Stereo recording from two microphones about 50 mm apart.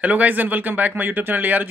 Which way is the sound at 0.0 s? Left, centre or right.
Right.